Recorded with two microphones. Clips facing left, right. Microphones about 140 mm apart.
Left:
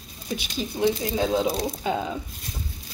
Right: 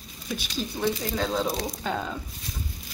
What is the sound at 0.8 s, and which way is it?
Speech, 15° left (ahead or behind).